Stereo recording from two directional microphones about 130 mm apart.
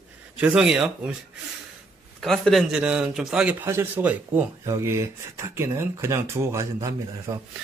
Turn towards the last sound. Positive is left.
turn(degrees=-25)  # may be behind; listen again after turning